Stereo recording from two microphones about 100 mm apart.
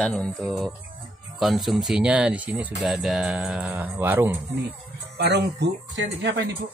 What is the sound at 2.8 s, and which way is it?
Speech, 5° right (ahead or behind).